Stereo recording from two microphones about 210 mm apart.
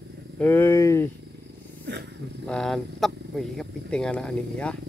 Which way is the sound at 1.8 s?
50° right (ahead or behind).